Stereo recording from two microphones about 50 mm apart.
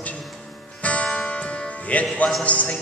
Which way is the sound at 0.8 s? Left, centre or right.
Left.